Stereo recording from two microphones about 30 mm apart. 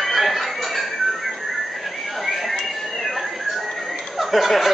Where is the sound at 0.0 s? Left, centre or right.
Centre.